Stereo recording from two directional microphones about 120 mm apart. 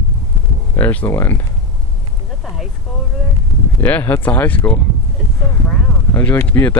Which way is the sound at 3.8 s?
15° left (ahead or behind).